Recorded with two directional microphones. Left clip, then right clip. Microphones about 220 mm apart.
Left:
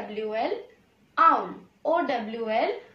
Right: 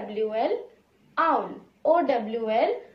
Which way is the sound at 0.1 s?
5° left (ahead or behind).